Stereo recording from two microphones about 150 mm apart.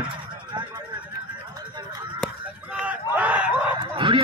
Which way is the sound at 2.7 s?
10° right (ahead or behind).